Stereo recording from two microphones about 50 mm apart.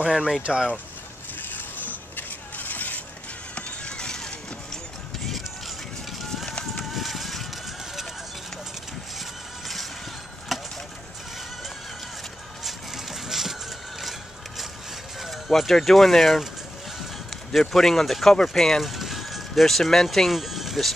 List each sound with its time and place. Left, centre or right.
0.0 s speech: centre
1.5 s a sound: left
3.5 s a sound: centre
6.8 s music: centre
10.5 s vehicle: centre
12.6 s vehicle: centre
15.2 s speech: centre
17.5 s speech: centre